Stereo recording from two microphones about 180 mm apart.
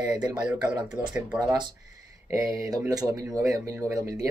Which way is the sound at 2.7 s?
20° right (ahead or behind).